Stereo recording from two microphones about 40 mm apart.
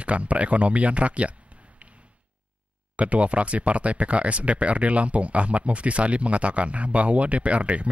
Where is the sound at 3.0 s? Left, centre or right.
Right.